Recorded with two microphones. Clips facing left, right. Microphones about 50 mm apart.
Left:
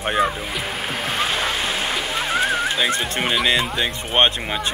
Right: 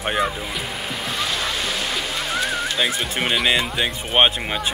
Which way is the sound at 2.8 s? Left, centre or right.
Centre.